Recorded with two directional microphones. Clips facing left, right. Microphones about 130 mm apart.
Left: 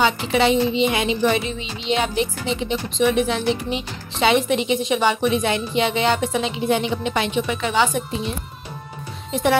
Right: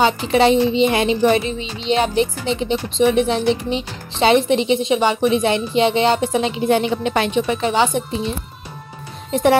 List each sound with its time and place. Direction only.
0.0 s speech: 35° right (ahead or behind)
6.4 s a woman's voice: 50° right (ahead or behind)
9.3 s a woman's voice: 40° right (ahead or behind)